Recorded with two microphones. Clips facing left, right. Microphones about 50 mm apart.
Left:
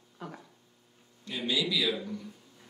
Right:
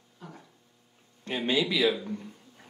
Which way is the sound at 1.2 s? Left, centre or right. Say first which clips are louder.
Right 4 dB; right.